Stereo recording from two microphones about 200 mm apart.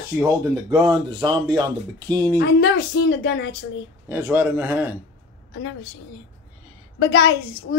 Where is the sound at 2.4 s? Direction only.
55° left (ahead or behind).